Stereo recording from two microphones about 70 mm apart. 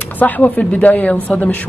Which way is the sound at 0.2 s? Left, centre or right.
Left.